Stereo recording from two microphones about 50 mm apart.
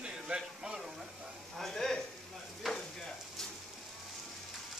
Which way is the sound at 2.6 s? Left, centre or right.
Centre.